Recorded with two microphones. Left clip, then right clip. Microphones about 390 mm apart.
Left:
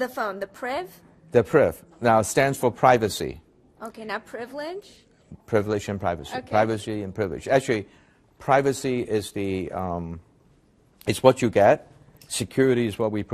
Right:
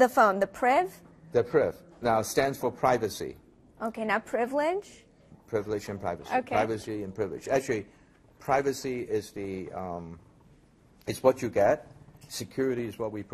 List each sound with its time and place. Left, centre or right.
0.0 s a woman's voice: right
1.3 s a man's voice: left
3.8 s a woman's voice: right
5.5 s a man's voice: left